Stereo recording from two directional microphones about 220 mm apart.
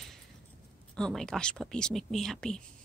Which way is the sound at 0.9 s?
5° left (ahead or behind).